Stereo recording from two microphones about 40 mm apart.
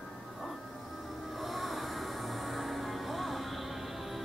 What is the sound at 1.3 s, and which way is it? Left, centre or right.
Music, centre.